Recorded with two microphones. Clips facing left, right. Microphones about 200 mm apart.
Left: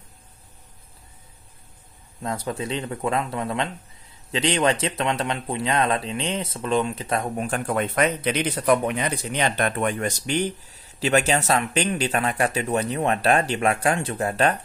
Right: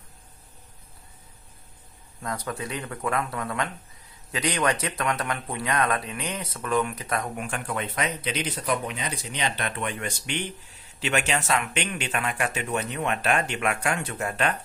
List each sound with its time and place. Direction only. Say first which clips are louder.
2.2 s speech: left 4 dB; 25° left (ahead or behind)